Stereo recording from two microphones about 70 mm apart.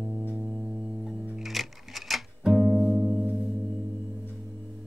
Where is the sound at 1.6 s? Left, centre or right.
Centre.